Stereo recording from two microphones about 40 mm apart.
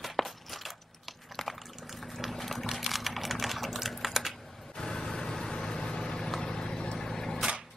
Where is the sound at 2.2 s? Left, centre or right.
Centre.